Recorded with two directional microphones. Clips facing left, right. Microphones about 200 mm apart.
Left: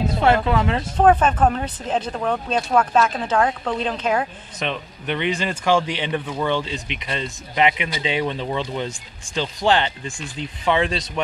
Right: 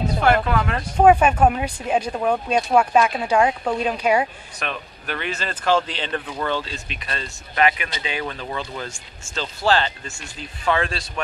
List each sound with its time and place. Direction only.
0.5 s speech: 25° left (ahead or behind)
0.9 s speech: 10° right (ahead or behind)
4.6 s speech: 20° left (ahead or behind)